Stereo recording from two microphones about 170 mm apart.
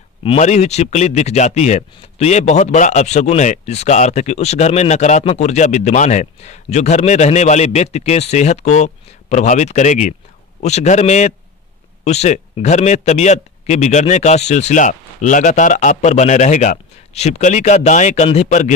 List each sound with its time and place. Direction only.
0.2 s speech: 35° left (ahead or behind)